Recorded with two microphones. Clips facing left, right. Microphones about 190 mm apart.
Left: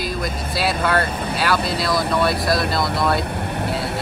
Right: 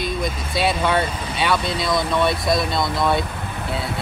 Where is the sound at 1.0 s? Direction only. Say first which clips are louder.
Left 2 dB; 60° left (ahead or behind).